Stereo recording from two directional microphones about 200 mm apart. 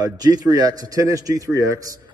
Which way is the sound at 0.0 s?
20° right (ahead or behind).